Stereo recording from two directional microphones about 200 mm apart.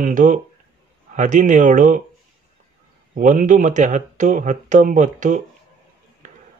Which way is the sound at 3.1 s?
40° right (ahead or behind).